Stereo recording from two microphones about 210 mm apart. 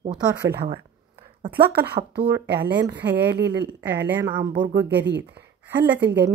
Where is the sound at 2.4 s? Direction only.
50° right (ahead or behind).